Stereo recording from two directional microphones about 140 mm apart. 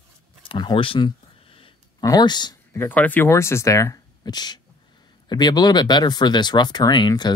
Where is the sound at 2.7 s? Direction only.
15° left (ahead or behind).